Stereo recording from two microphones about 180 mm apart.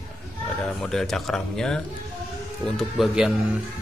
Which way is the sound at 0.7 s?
5° left (ahead or behind).